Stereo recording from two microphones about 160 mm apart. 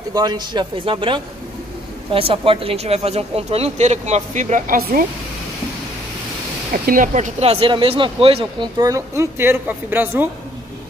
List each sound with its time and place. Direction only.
0.1 s a man's voice: 25° right (ahead or behind); by 5.0 s 60° right (ahead or behind)
6.7 s speech: 60° right (ahead or behind); by 8.6 s 35° right (ahead or behind)
8.7 s a woman's voice: 20° right (ahead or behind)